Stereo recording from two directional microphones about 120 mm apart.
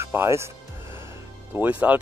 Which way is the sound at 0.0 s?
20° right (ahead or behind).